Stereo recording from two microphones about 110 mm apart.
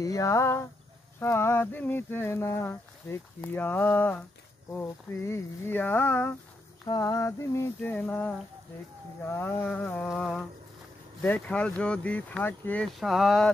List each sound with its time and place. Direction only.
0.0 s speech: 30° left (ahead or behind)
6.9 s speech: 30° left (ahead or behind); by 10.4 s 5° left (ahead or behind)
11.2 s speech: 15° left (ahead or behind)
12.8 s speech: centre (ahead or behind)